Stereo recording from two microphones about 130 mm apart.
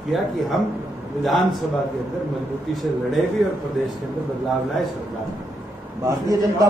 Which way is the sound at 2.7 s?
Centre (ahead or behind).